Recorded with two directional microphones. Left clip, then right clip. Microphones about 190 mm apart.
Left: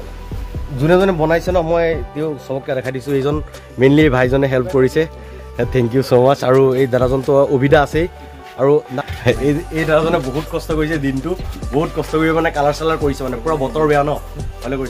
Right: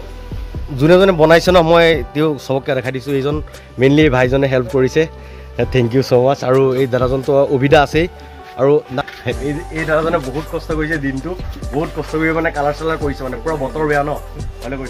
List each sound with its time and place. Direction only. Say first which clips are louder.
0.7 s speech: right 4 dB; 20° right (ahead or behind)
1.3 s speech: right 6 dB; 35° right (ahead or behind); by 9.0 s 10° right (ahead or behind)
9.3 s speech: left 11 dB; 60° left (ahead or behind)
9.8 s speech: even; centre (ahead or behind)